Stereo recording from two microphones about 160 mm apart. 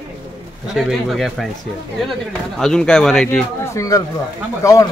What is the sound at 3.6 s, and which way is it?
Speech, 20° left (ahead or behind).